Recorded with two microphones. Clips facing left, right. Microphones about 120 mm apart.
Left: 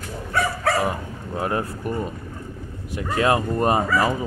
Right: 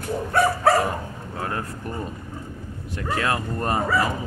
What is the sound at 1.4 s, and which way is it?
Speech, 15° left (ahead or behind).